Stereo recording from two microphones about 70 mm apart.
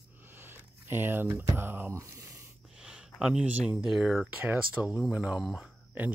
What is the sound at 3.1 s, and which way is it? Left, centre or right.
Speech, centre.